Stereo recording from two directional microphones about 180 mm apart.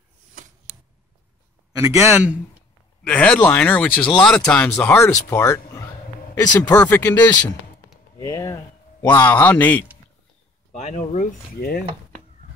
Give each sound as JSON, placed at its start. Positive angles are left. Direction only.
{"t": 1.8, "sound": "a man's voice", "side_deg": -15}
{"t": 3.0, "sound": "speech", "side_deg": 5}
{"t": 8.2, "sound": "speech", "side_deg": 15}
{"t": 10.7, "sound": "speech", "side_deg": 40}
{"t": 11.6, "sound": "cutlery", "side_deg": 60}